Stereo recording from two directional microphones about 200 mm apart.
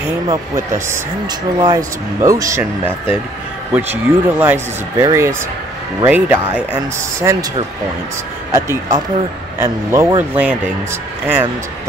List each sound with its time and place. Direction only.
0.8 s speech: 15° right (ahead or behind)
8.5 s speech: 15° right (ahead or behind)